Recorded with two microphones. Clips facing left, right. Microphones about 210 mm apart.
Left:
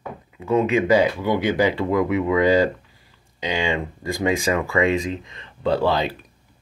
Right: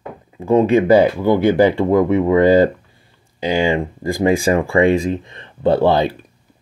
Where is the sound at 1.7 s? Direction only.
30° right (ahead or behind).